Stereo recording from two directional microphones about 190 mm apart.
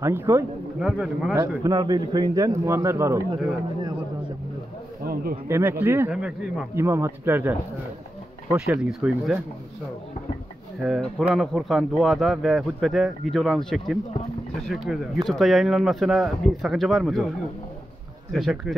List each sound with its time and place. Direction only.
0.0 s speech: 10° right (ahead or behind)
1.6 s speech: 20° right (ahead or behind)
5.0 s a man's voice: 50° right (ahead or behind)
5.5 s speech: 10° right (ahead or behind)
6.7 s speech: 15° right (ahead or behind)
10.8 s speech: centre (ahead or behind)
18.3 s speech: centre (ahead or behind)